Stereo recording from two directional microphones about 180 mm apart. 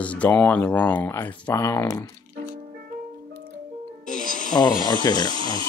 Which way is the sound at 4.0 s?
45° left (ahead or behind).